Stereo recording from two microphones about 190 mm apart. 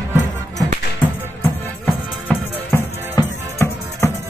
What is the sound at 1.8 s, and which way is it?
Music, 10° left (ahead or behind).